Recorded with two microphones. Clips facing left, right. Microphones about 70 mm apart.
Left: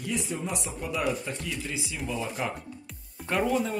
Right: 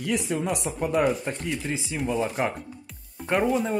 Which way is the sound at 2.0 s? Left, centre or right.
Right.